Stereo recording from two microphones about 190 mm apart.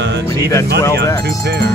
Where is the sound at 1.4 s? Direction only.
55° right (ahead or behind).